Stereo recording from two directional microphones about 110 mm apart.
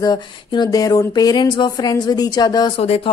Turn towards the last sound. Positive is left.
turn(degrees=65)  # may be behind; listen again after turning